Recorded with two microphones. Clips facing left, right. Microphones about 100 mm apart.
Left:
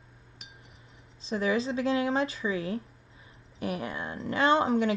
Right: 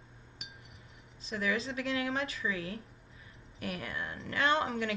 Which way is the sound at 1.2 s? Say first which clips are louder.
Left 6 dB; 30° left (ahead or behind).